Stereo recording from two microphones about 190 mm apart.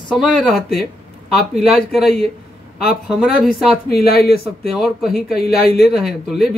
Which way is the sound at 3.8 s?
55° left (ahead or behind).